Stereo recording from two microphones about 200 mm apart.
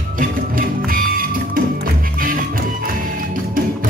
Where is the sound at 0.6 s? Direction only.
45° right (ahead or behind).